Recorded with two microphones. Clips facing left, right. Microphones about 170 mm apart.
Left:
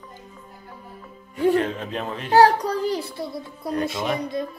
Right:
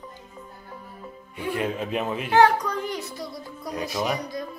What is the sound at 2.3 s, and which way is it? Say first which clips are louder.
A child's voice: left 3 dB; 35° left (ahead or behind).